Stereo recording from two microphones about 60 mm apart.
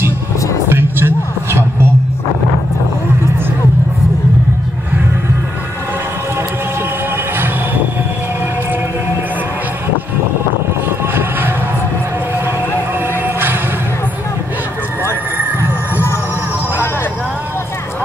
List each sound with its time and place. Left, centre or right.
0.7 s a sound: right
7.3 s music: right
11.1 s music: right
13.2 s music: right